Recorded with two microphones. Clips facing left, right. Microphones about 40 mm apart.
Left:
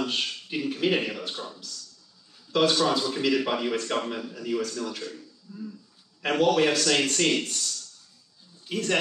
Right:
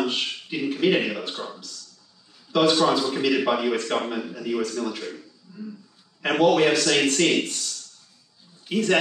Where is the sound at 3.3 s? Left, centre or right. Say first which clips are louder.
Right 5 dB; right.